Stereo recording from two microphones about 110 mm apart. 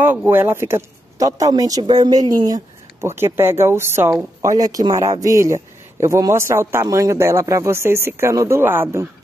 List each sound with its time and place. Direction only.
0.0 s speech: 20° right (ahead or behind); by 3.1 s 35° right (ahead or behind)
3.2 s a man's voice: 20° right (ahead or behind)
4.4 s a man's voice: 35° right (ahead or behind)